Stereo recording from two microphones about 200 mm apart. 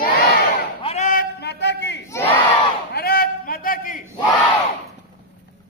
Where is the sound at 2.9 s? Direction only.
50° left (ahead or behind).